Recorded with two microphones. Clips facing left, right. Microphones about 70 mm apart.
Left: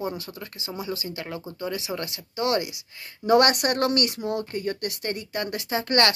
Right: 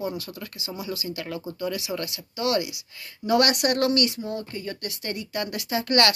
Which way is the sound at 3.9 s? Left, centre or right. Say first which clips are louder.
Right 1 dB; left.